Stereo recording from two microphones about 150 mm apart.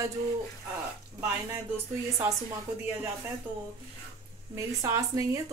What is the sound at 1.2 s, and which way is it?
Speech, 20° right (ahead or behind).